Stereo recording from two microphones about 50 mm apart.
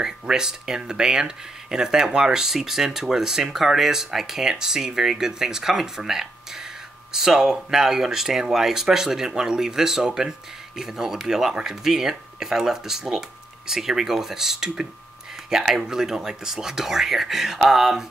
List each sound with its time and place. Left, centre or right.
0.0 s speech: centre